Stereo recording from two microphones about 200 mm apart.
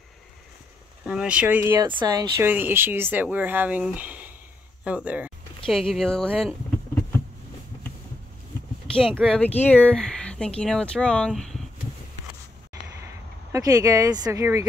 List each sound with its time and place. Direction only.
1.0 s speech: 5° right (ahead or behind)
1.9 s speech: 20° right (ahead or behind); by 6.5 s 5° left (ahead or behind)
9.2 s speech: 5° left (ahead or behind)
13.5 s speech: 20° right (ahead or behind)